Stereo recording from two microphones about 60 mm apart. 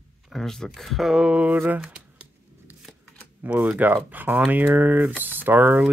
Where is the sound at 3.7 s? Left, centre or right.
Right.